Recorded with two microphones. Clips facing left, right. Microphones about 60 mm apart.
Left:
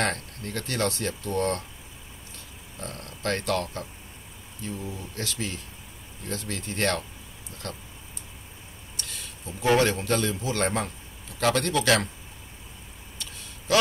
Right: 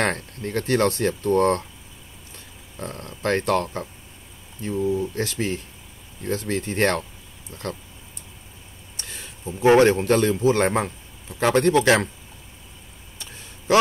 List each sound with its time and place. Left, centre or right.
0.0 s speech: right
8.9 s a man's voice: right